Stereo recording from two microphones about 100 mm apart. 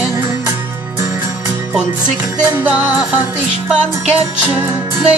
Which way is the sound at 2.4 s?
15° right (ahead or behind).